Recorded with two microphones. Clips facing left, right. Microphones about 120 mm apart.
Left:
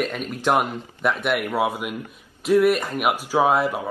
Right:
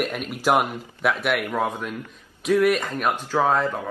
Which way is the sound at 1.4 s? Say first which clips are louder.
Left 2 dB; 10° left (ahead or behind).